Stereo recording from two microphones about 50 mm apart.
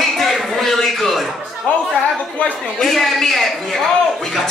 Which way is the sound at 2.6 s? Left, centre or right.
Centre.